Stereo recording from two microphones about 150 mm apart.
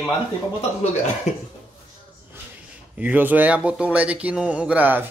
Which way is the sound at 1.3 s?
50° left (ahead or behind).